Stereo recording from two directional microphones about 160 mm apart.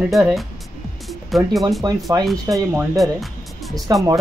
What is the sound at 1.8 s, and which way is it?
Speech, 25° right (ahead or behind).